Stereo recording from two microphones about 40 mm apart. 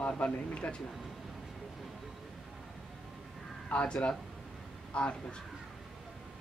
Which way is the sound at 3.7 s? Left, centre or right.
Left.